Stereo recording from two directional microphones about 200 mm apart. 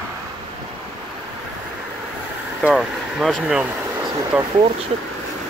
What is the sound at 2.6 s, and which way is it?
Speech, centre (ahead or behind).